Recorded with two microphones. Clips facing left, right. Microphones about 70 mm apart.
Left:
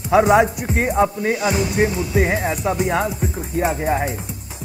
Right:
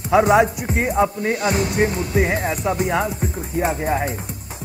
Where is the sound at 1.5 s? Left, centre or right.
Right.